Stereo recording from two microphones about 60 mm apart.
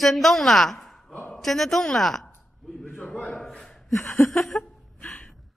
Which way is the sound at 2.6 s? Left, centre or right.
Centre.